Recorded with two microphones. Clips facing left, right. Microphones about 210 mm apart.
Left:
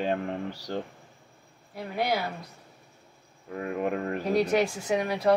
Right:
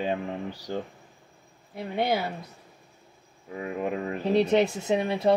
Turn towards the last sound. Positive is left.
turn(degrees=-25)  # may be behind; listen again after turning